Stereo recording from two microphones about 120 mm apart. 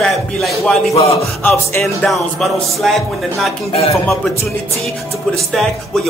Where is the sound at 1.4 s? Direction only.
20° left (ahead or behind).